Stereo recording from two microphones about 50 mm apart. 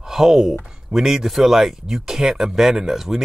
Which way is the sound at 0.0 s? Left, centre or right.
Centre.